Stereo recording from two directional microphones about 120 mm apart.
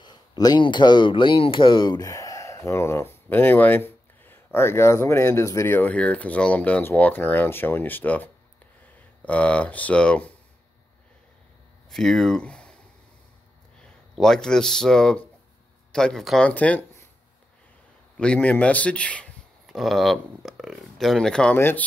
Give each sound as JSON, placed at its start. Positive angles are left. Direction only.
{"t": 0.0, "sound": "speech", "side_deg": 40}
{"t": 11.9, "sound": "speech", "side_deg": 5}
{"t": 13.7, "sound": "speech", "side_deg": 5}
{"t": 18.1, "sound": "speech", "side_deg": 10}
{"t": 21.5, "sound": "speech", "side_deg": 15}